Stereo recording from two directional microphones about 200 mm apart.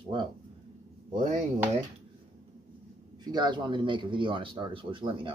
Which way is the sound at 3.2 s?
20° right (ahead or behind).